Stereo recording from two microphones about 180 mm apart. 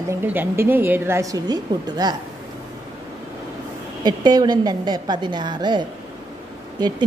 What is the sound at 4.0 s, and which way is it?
A woman's voice, 25° right (ahead or behind).